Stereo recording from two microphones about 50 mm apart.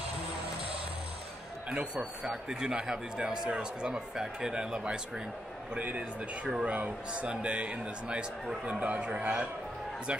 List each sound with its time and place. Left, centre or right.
1.7 s a man's voice: right
5.8 s a man's voice: right